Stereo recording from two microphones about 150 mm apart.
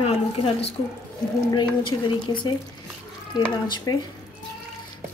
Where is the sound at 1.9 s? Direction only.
30° left (ahead or behind).